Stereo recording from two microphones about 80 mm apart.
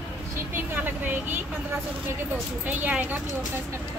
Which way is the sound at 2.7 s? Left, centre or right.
Right.